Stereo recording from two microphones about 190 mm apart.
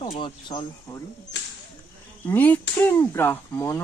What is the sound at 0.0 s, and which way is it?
Speech, 25° left (ahead or behind).